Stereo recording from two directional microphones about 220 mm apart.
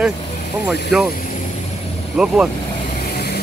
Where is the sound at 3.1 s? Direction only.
45° left (ahead or behind).